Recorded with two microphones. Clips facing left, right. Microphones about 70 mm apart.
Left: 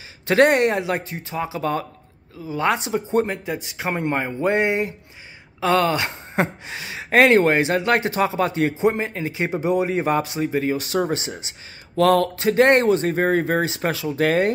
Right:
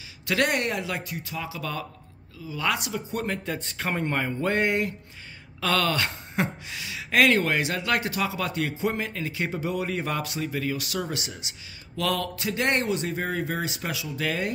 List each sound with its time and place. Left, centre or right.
0.3 s speech: left
3.4 s speech: centre; by 14.5 s left